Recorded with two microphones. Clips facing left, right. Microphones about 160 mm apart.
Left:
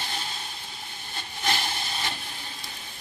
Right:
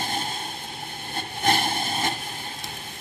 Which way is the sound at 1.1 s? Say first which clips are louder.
Right 6 dB; 50° right (ahead or behind).